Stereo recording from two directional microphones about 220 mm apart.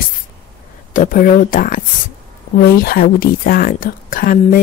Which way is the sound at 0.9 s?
35° left (ahead or behind).